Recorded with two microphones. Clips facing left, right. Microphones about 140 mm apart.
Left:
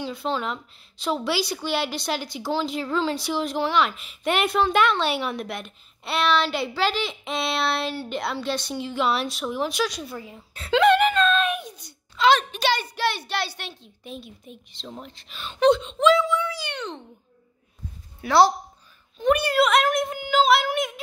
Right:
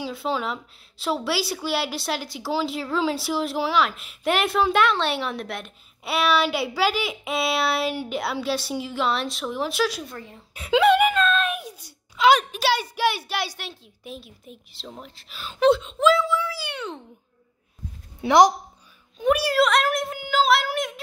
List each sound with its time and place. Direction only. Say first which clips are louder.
0.0 s a woman's voice: even; 5° right (ahead or behind)
10.5 s a child's voice: even; 10° right (ahead or behind)
18.2 s speech: right 2 dB; 15° right (ahead or behind)
19.1 s a woman's voice: even; 5° right (ahead or behind)